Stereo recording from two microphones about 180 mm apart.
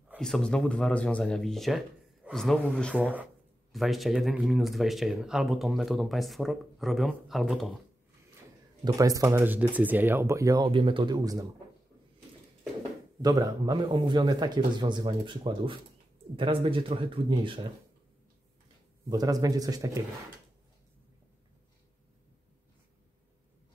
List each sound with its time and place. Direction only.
0.2 s speech: 5° left (ahead or behind)
3.0 s speech: 10° right (ahead or behind)
8.8 s speech: 20° right (ahead or behind)
13.2 s speech: 20° right (ahead or behind)
19.0 s speech: 20° right (ahead or behind)